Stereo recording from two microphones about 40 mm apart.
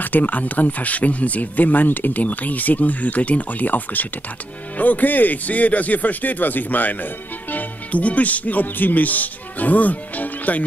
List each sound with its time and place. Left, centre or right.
0.0 s speech: left